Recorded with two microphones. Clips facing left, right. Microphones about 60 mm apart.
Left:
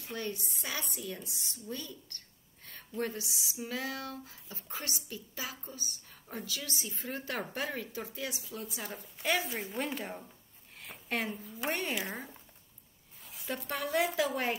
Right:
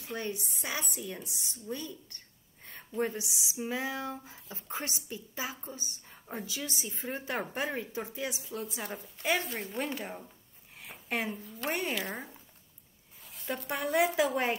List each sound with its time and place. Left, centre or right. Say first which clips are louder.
0.0 s a woman's voice: right 2 dB; centre
8.7 s speech: right 3 dB; centre
13.3 s zipper: right 2 dB; centre
13.7 s a woman's voice: right 3 dB; centre